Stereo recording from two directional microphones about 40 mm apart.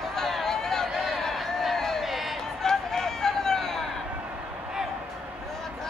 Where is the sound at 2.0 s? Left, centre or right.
Centre.